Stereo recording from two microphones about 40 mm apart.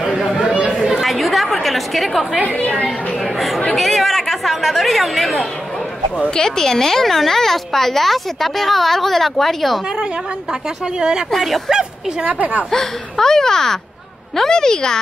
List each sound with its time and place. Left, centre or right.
0.0 s chatter: centre
0.4 s chatter: right
1.0 s a sound: centre
3.3 s speech: centre
6.3 s speech: centre
11.0 s a woman's voice: centre
12.7 s speech: centre